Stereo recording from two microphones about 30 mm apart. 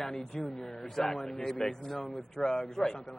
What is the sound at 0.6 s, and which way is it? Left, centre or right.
Speech, centre.